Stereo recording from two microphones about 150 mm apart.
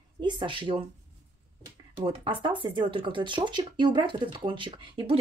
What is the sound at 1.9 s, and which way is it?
A woman's voice, 35° right (ahead or behind).